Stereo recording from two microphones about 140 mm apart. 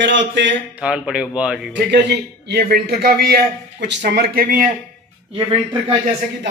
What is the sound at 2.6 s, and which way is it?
A man's voice, 90° right.